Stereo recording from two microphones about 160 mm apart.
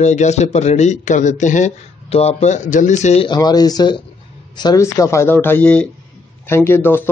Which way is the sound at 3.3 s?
25° left (ahead or behind).